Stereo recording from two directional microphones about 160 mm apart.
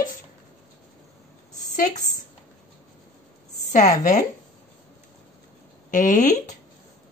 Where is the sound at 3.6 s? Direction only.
45° left (ahead or behind).